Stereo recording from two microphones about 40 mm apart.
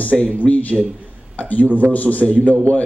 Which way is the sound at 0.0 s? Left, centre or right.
Left.